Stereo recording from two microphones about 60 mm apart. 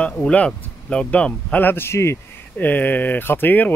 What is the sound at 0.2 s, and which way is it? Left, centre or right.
A man's voice, centre.